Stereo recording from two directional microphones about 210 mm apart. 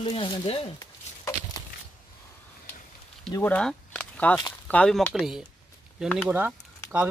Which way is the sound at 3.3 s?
10° left (ahead or behind).